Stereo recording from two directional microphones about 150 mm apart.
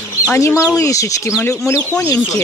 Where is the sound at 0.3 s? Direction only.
15° left (ahead or behind).